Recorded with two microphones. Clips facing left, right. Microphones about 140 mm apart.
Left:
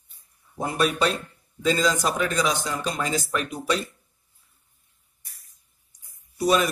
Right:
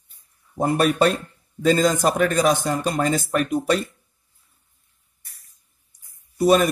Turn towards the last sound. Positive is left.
turn(degrees=-50)  # may be behind; listen again after turning